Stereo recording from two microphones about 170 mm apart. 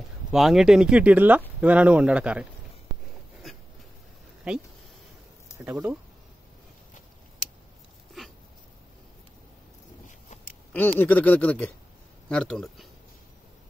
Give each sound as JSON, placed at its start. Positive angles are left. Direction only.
{"t": 0.3, "sound": "speech", "side_deg": 0}
{"t": 5.7, "sound": "speech", "side_deg": -10}
{"t": 8.2, "sound": "dog", "side_deg": 0}
{"t": 10.0, "sound": "a sound", "side_deg": 50}
{"t": 11.0, "sound": "speech", "side_deg": 10}